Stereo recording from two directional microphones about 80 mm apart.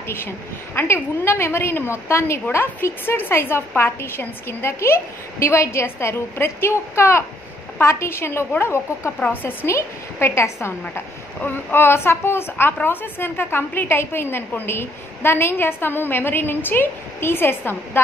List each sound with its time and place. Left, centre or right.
0.7 s a woman's voice: left